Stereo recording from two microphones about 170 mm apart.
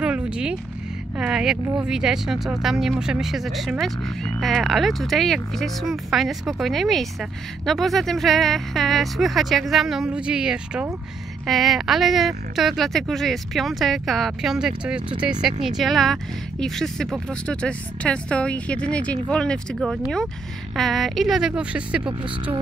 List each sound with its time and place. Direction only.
0.0 s vehicle: 5° right (ahead or behind)
1.1 s speech: 5° right (ahead or behind)
22.2 s speech: 30° right (ahead or behind)